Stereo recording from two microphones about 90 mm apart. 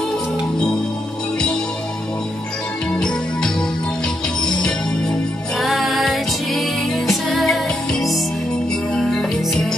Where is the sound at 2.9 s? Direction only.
10° left (ahead or behind).